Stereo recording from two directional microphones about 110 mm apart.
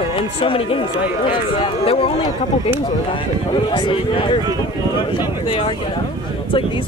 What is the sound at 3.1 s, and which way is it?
Speech, 45° left (ahead or behind).